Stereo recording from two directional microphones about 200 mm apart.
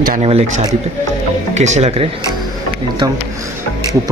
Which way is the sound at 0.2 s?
30° right (ahead or behind).